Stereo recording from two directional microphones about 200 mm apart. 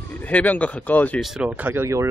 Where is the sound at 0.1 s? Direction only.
5° left (ahead or behind).